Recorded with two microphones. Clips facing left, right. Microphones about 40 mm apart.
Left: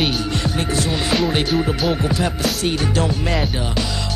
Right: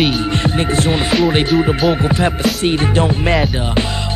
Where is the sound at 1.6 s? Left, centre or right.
Right.